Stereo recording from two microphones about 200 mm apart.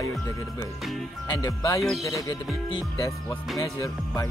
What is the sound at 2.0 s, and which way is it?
Music, 15° left (ahead or behind).